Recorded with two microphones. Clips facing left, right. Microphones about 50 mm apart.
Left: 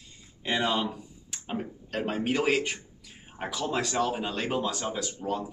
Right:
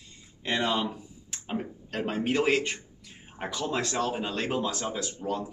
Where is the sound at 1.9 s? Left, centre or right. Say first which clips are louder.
Right 1 dB; centre.